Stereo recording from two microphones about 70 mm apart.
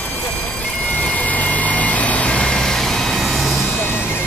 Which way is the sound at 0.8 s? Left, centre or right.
Left.